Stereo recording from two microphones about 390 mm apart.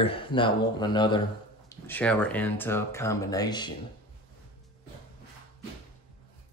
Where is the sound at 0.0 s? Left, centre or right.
Centre.